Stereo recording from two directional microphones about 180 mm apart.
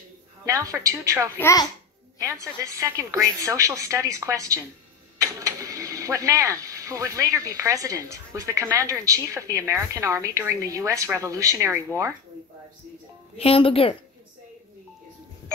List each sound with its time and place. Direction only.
0.5 s speech: 20° right (ahead or behind)
1.4 s a child's voice: 20° left (ahead or behind)
2.1 s speech: 20° right (ahead or behind)
13.4 s a woman's voice: 30° left (ahead or behind)